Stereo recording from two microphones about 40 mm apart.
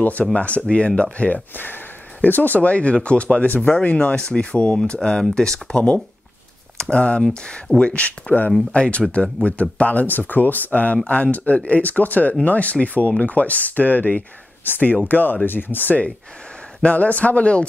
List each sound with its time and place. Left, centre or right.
0.0 s speech: left
1.5 s speech: left; by 5.8 s centre
6.8 s speech: left
8.7 s speech: left
15.4 s speech: left
16.8 s speech: left